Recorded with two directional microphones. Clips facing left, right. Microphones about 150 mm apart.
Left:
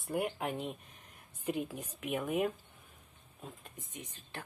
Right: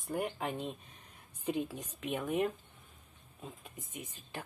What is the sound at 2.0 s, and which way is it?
Speech, 10° left (ahead or behind).